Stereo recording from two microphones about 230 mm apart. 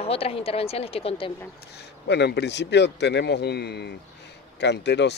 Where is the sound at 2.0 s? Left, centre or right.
Left.